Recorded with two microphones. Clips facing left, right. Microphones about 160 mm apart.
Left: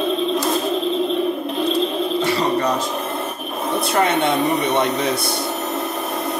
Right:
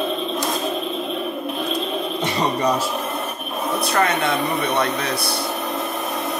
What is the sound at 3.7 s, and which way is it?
Speech, 25° left (ahead or behind).